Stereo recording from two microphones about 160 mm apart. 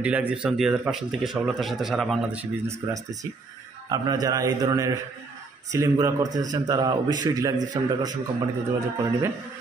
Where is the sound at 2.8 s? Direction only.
15° right (ahead or behind).